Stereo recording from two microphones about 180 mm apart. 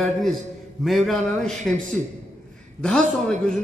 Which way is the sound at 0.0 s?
Centre (ahead or behind).